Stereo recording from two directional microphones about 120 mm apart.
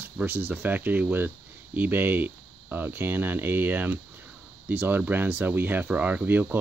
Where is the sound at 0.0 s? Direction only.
15° right (ahead or behind).